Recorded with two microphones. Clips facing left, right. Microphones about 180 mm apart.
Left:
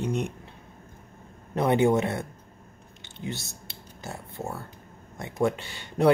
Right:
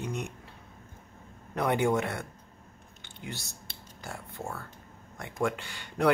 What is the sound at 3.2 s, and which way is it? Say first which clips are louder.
Speech: left 6 dB; 25° left (ahead or behind).